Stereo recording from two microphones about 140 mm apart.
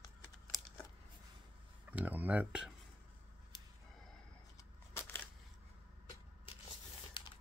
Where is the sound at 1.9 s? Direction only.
10° right (ahead or behind).